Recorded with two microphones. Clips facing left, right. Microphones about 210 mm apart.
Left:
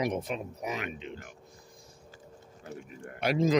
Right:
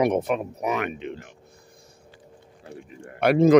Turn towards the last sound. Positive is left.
turn(degrees=-60)  # may be behind; listen again after turning